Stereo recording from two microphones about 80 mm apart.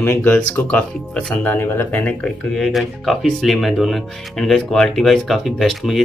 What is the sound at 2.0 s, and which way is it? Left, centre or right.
Speech, centre.